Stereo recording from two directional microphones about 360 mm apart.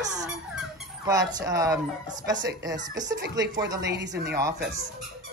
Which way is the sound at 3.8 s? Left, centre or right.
Right.